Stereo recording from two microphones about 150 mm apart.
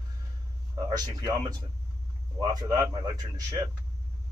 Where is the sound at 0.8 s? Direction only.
25° right (ahead or behind).